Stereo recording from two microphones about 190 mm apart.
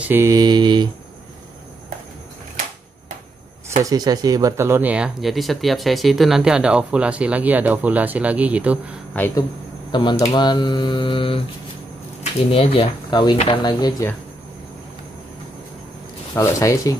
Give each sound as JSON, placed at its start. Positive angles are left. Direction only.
{"t": 0.0, "sound": "mantra", "side_deg": -10}
{"t": 3.8, "sound": "speech", "side_deg": -20}
{"t": 9.1, "sound": "speech", "side_deg": 10}
{"t": 9.8, "sound": "speech", "side_deg": 25}
{"t": 16.3, "sound": "speech", "side_deg": 15}